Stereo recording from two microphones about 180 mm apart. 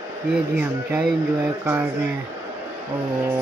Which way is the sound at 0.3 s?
5° right (ahead or behind).